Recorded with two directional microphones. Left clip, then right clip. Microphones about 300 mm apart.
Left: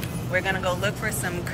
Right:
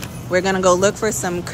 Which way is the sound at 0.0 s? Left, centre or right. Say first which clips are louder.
Right 6 dB; centre.